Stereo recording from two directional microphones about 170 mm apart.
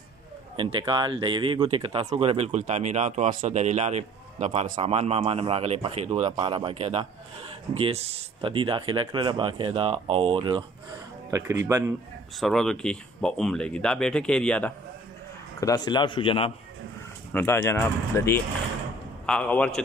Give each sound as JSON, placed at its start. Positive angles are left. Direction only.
{"t": 0.6, "sound": "a man's voice", "side_deg": -30}
{"t": 11.2, "sound": "speech", "side_deg": -15}
{"t": 12.4, "sound": "speech", "side_deg": 0}
{"t": 15.6, "sound": "speech", "side_deg": 20}
{"t": 17.3, "sound": "speech", "side_deg": 15}